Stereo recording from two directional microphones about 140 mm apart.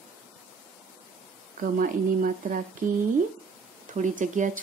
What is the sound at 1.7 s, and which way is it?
Speech, 75° right (ahead or behind).